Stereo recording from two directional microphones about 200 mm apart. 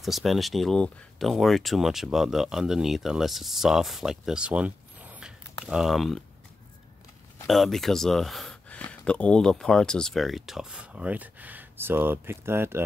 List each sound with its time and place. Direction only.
0.0 s speech: centre (ahead or behind)
7.4 s speech: centre (ahead or behind)